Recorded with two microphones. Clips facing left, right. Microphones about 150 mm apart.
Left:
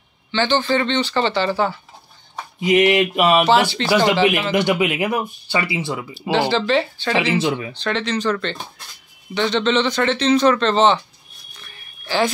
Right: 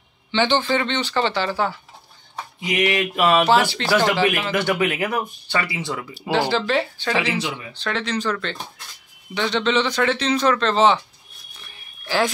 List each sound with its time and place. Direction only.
0.3 s a man's voice: 20° right (ahead or behind)
0.7 s speech: 10° right (ahead or behind)
2.6 s a sound: 25° left (ahead or behind)
3.4 s speech: 5° right (ahead or behind)
3.9 s a sound: 15° left (ahead or behind)
4.5 s speech: 15° left (ahead or behind)
6.3 s speech: 10° right (ahead or behind)
7.1 s a sound: 20° left (ahead or behind)
7.7 s speech: 5° right (ahead or behind)